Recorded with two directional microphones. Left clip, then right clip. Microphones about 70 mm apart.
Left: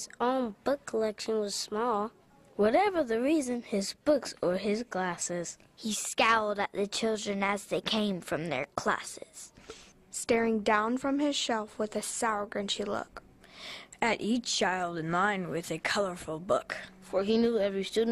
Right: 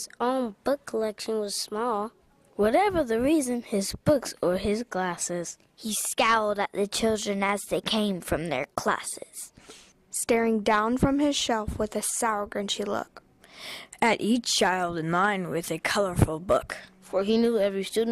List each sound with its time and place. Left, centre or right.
0.0 s speech: right